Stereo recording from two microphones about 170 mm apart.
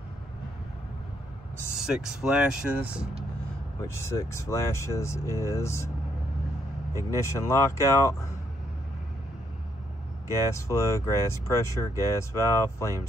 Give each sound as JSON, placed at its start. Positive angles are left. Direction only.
{"t": 1.8, "sound": "speech", "side_deg": -5}
{"t": 3.8, "sound": "speech", "side_deg": 15}
{"t": 6.9, "sound": "speech", "side_deg": -20}
{"t": 7.2, "sound": "speech", "side_deg": 15}
{"t": 10.5, "sound": "speech", "side_deg": 15}